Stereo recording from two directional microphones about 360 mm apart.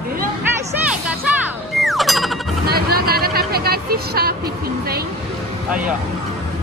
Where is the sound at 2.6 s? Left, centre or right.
Right.